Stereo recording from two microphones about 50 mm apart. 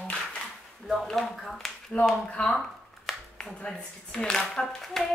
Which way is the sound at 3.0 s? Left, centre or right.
Centre.